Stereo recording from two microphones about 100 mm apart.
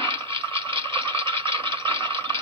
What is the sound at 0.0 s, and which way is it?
Toilet flush, 65° right (ahead or behind).